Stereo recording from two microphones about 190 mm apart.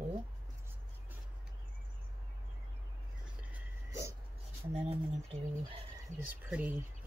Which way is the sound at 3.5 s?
10° right (ahead or behind).